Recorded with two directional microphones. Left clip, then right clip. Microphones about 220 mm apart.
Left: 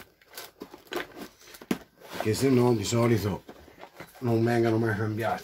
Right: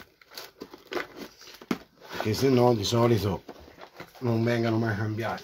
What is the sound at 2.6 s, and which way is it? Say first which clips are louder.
Speech: right 2 dB; 25° right (ahead or behind).